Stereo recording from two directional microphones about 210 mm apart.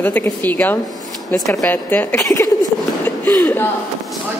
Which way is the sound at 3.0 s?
10° left (ahead or behind).